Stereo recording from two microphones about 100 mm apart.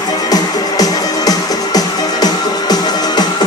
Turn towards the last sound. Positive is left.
turn(degrees=40)  # may be behind; listen again after turning